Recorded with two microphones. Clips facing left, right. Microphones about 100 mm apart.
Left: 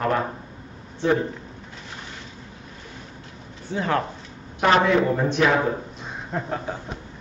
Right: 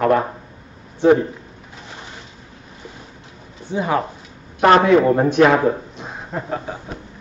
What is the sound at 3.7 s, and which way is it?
Speech, 15° right (ahead or behind).